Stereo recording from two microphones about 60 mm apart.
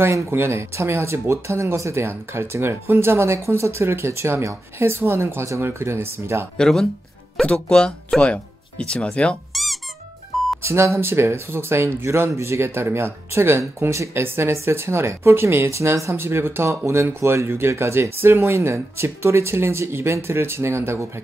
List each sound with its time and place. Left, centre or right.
0.0 s speech: right
6.5 s speech: centre
9.5 s squeak: centre
10.6 s speech: right